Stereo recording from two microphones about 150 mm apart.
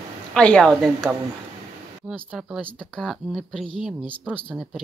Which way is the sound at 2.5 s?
Centre (ahead or behind).